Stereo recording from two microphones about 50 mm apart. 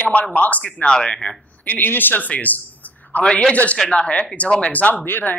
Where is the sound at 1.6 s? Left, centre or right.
Left.